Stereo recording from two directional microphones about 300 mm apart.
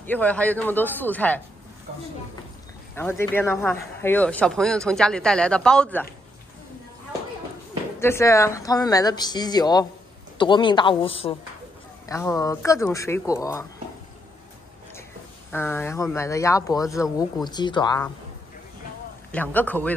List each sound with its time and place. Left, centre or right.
0.0 s speech: centre
3.0 s speech: centre
8.0 s speech: centre
15.5 s speech: centre
19.3 s speech: centre